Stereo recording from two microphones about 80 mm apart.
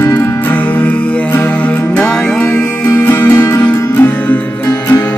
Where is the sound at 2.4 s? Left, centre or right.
Left.